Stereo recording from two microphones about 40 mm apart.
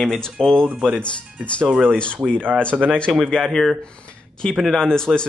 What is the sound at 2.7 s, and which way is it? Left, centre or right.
Speech, centre.